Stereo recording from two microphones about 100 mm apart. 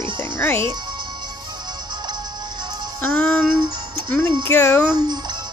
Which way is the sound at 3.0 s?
10° left (ahead or behind).